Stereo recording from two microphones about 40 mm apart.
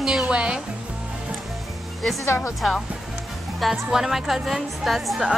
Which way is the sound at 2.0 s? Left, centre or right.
Centre.